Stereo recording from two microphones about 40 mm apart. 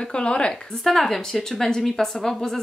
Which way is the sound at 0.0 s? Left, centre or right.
Left.